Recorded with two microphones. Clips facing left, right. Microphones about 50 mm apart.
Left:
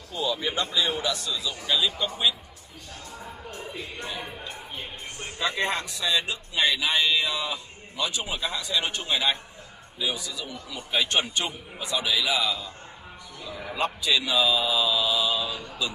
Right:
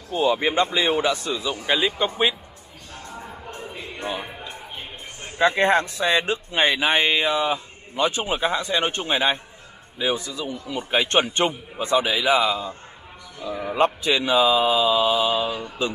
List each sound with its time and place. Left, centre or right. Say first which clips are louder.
0.1 s speech: right 8 dB; right
3.4 s music: even; right
5.4 s speech: right 9 dB; right